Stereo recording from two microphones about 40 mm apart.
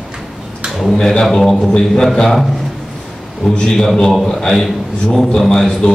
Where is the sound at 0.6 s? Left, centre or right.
Centre.